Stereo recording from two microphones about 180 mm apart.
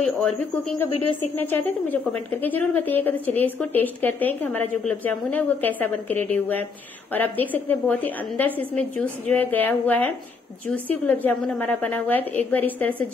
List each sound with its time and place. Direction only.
0.0 s a woman's voice: 5° left (ahead or behind)